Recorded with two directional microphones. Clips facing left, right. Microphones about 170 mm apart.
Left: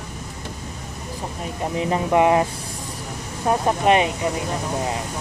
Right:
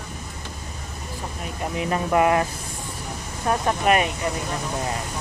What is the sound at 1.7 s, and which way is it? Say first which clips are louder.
Speech: left 2 dB; 25° left (ahead or behind).